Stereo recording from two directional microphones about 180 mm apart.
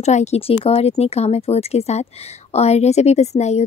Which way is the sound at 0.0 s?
40° left (ahead or behind).